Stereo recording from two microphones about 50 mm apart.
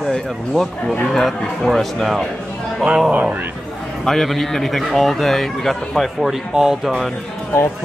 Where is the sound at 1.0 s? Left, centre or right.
Centre.